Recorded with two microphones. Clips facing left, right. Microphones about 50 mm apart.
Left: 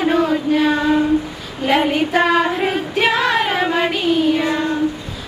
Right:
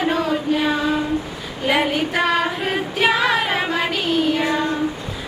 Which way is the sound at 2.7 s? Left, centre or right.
Centre.